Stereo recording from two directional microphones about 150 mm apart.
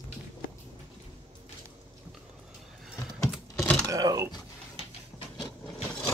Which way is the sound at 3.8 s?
25° right (ahead or behind).